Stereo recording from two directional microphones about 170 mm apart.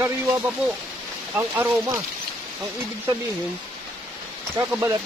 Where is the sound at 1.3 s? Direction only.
15° right (ahead or behind).